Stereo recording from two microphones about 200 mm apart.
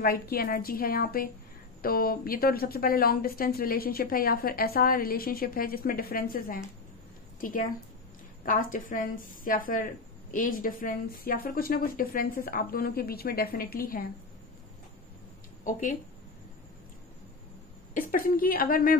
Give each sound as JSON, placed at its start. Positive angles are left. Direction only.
{"t": 0.0, "sound": "a woman's voice", "side_deg": 45}
{"t": 15.6, "sound": "speech", "side_deg": 40}
{"t": 17.9, "sound": "a woman's voice", "side_deg": 45}